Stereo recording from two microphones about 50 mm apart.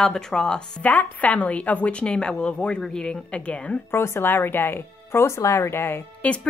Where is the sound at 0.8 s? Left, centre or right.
Left.